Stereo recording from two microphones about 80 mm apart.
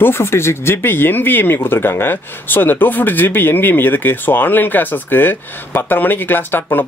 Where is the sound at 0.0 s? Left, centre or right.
Left.